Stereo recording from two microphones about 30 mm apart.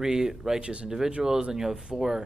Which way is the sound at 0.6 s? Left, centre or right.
Right.